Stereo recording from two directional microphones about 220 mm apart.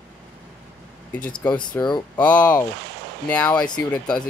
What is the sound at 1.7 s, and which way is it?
Speech, 20° left (ahead or behind).